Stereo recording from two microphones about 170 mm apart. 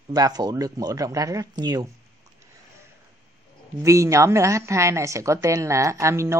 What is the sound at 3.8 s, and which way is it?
A woman's voice, 15° right (ahead or behind).